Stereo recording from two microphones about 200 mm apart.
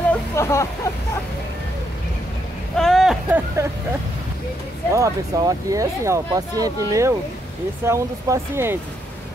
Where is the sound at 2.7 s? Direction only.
Centre (ahead or behind).